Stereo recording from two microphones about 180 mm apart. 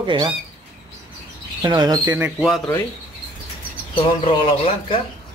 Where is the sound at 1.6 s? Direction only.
20° right (ahead or behind).